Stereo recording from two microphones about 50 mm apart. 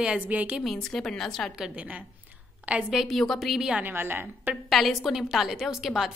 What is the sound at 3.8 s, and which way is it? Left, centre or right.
Speech, right.